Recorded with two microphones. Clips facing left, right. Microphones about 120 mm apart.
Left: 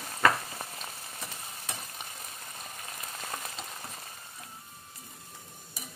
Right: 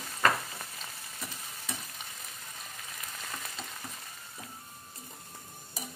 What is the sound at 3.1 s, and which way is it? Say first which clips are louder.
Frying: left 4 dB; 35° left (ahead or behind).